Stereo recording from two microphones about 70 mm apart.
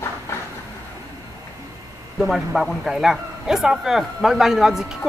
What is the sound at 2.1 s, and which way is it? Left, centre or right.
A man's voice, centre.